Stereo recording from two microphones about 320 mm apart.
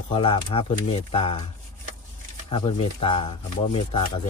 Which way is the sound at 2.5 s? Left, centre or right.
Centre.